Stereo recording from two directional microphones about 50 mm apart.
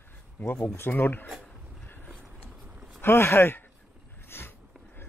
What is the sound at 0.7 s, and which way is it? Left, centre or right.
Speech, left.